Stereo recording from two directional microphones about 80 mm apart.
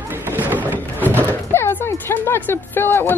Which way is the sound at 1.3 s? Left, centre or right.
Left.